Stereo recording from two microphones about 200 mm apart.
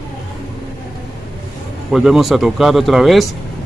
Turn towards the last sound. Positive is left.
turn(degrees=0)  # may be behind; listen again after turning